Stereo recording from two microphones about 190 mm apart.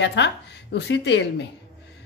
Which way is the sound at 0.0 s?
65° left (ahead or behind).